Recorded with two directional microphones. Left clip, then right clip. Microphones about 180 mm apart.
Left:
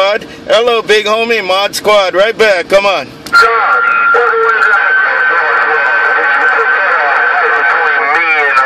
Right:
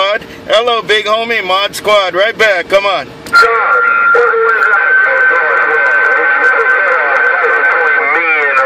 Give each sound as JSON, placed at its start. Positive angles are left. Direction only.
{"t": 0.0, "sound": "vehicle", "side_deg": 25}